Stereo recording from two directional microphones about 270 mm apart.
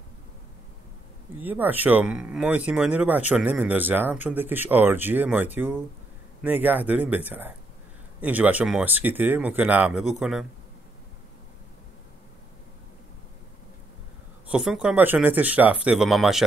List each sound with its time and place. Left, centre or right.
1.4 s speech: centre
14.5 s speech: centre